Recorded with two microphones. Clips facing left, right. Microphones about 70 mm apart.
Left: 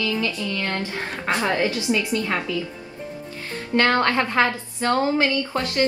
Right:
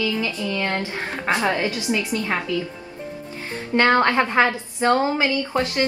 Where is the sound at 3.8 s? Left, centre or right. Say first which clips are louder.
Right 2 dB; right.